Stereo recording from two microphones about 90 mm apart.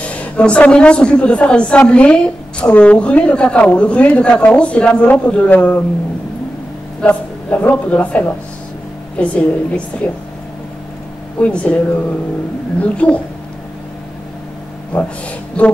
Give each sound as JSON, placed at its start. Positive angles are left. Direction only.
{"t": 0.0, "sound": "a woman's voice", "side_deg": 15}
{"t": 7.0, "sound": "a woman's voice", "side_deg": 15}
{"t": 11.3, "sound": "a woman's voice", "side_deg": 15}
{"t": 12.8, "sound": "a woman's voice", "side_deg": 15}
{"t": 14.9, "sound": "speech", "side_deg": 15}